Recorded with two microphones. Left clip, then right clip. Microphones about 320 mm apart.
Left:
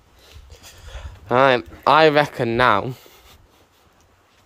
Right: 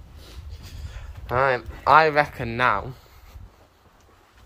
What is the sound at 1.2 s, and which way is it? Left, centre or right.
Speech, left.